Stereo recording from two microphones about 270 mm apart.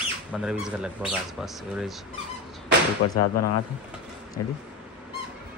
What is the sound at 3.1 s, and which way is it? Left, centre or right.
Speech, left.